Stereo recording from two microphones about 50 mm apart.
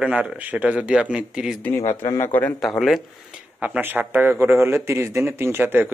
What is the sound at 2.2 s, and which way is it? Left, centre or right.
Speech, left.